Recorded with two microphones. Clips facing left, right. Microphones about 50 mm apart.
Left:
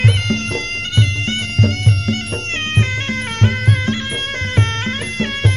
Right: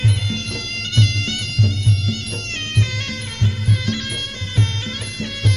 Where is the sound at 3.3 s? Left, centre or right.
Left.